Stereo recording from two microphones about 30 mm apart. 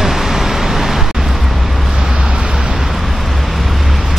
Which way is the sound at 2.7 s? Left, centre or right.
Centre.